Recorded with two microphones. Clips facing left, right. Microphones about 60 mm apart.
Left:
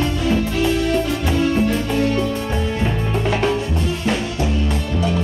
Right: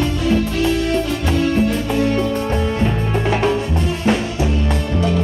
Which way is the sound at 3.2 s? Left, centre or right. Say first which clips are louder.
Right 2 dB; centre.